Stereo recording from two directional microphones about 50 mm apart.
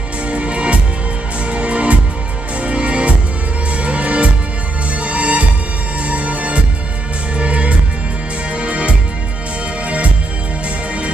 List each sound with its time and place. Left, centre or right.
0.3 s music: right